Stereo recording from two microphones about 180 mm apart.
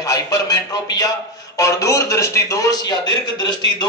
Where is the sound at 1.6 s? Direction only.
15° left (ahead or behind).